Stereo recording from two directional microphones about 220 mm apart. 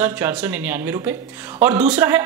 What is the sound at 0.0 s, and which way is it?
A woman's voice, 5° right (ahead or behind).